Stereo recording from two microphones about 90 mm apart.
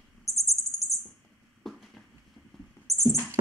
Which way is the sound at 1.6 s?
Centre (ahead or behind).